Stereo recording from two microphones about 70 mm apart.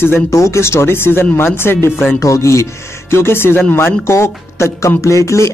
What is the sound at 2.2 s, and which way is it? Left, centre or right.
Music, left.